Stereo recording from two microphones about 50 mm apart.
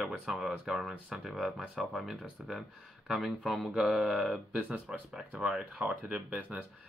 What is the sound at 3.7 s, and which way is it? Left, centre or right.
Speech, centre.